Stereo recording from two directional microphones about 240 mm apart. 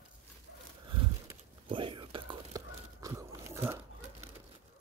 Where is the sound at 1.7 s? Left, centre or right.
Right.